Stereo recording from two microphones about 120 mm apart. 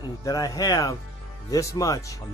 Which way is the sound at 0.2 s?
30° left (ahead or behind).